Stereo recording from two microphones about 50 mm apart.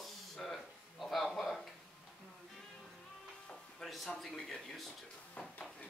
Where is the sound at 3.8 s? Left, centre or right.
Centre.